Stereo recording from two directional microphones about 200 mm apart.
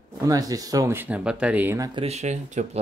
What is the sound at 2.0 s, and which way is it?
Speech, 35° right (ahead or behind).